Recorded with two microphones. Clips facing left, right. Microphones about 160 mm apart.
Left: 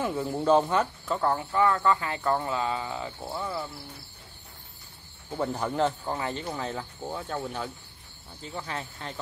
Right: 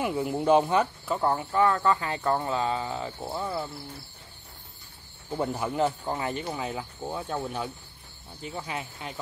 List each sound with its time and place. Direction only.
0.0 s speech: 15° right (ahead or behind)
3.2 s speech: 15° right (ahead or behind)
5.3 s speech: 10° right (ahead or behind)